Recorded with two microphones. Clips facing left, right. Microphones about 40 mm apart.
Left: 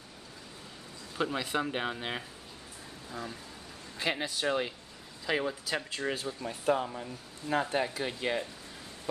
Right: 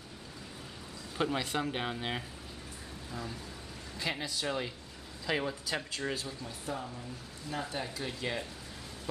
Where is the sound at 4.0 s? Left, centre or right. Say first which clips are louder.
Left 4 dB; left.